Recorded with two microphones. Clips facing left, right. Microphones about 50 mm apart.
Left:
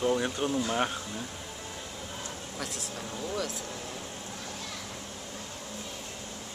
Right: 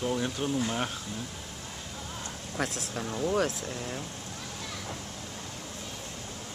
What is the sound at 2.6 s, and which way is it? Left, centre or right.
Speech, right.